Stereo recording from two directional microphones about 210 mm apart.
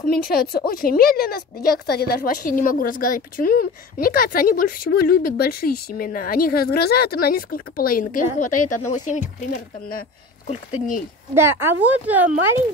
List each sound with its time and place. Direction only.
0.0 s a woman's voice: 45° left (ahead or behind)
11.3 s speech: 10° right (ahead or behind)